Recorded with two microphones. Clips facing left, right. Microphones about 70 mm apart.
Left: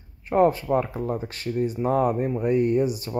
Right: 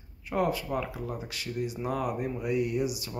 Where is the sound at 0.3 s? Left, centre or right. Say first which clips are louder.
Left 9 dB; left.